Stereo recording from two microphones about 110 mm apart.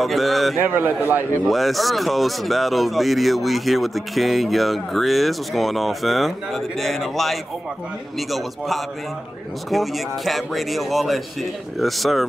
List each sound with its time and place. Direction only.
0.0 s speech: centre (ahead or behind)
0.6 s speech: 20° right (ahead or behind)
1.4 s speech: centre (ahead or behind)